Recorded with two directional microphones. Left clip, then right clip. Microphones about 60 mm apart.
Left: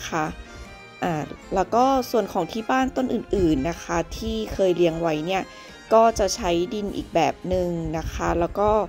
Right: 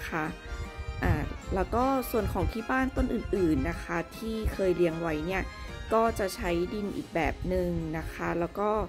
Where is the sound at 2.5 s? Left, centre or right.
Left.